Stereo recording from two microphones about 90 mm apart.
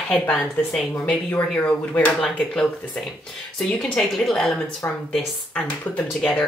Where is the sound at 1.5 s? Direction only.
15° left (ahead or behind).